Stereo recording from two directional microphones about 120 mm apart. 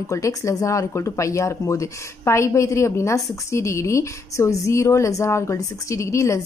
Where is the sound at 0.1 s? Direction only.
25° left (ahead or behind).